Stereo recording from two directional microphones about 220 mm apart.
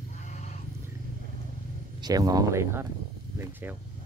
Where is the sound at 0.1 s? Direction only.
35° left (ahead or behind).